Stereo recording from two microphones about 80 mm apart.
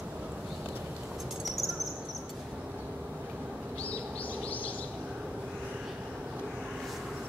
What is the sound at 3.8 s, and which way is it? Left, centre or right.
Bird, centre.